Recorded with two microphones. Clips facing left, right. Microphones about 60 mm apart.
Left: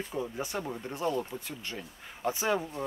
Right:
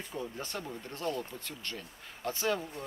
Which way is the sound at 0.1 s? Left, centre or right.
Centre.